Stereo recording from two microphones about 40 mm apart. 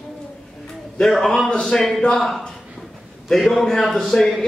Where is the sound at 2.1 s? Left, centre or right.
Centre.